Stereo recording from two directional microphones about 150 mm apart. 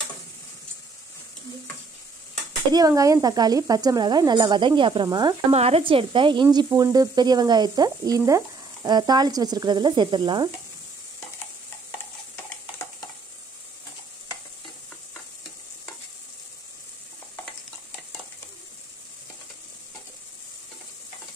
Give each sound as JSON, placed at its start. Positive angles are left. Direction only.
{"t": 2.7, "sound": "speech", "side_deg": -25}
{"t": 5.5, "sound": "speech", "side_deg": -40}